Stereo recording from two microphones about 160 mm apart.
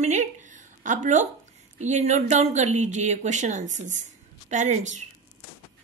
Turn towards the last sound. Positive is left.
turn(degrees=-50)  # may be behind; listen again after turning